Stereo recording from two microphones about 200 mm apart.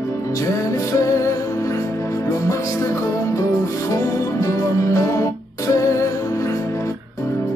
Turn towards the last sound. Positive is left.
turn(degrees=15)  # may be behind; listen again after turning